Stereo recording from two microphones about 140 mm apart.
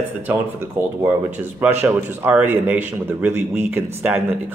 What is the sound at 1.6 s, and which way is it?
A man's voice, 15° right (ahead or behind).